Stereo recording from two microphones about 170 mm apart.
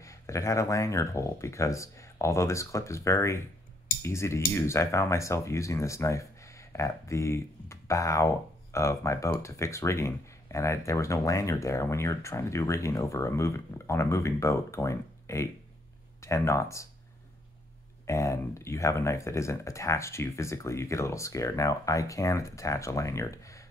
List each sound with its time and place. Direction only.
0.0 s speech: 20° left (ahead or behind)
18.0 s speech: 15° left (ahead or behind)